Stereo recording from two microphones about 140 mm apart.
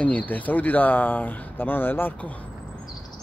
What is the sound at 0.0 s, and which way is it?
Speech, 10° left (ahead or behind).